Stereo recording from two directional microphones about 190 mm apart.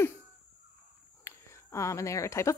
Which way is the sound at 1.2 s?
15° left (ahead or behind).